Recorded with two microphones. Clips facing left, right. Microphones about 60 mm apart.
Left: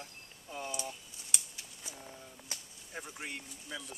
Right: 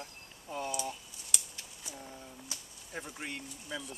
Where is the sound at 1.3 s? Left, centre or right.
Left.